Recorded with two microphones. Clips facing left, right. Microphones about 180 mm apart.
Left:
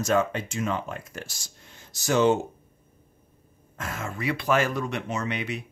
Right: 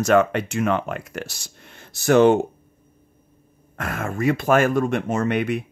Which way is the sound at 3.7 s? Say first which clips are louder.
Right 7 dB; 60° right (ahead or behind).